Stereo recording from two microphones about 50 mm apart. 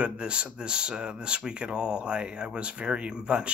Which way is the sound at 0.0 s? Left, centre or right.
Right.